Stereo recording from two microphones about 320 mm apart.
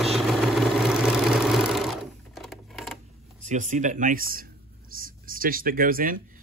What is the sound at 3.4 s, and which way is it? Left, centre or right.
Speech, right.